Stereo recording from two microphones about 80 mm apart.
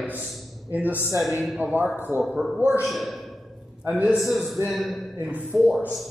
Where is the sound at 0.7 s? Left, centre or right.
Right.